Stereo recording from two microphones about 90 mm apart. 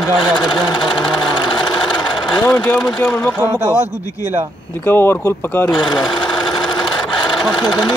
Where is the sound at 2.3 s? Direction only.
10° left (ahead or behind).